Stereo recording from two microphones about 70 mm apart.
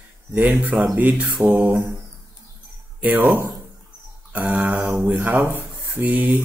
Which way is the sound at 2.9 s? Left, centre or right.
Right.